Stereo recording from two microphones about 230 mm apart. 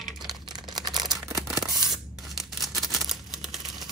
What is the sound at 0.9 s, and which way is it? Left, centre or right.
Camera, centre.